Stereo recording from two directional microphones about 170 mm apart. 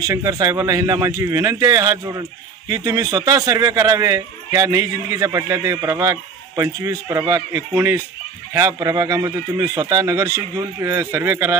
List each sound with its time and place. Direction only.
0.0 s a man's voice: 20° right (ahead or behind)